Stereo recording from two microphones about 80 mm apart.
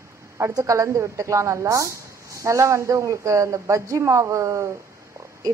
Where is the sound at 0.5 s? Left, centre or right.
Right.